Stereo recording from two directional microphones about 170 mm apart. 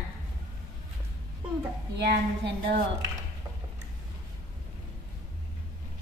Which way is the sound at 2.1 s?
70° right (ahead or behind).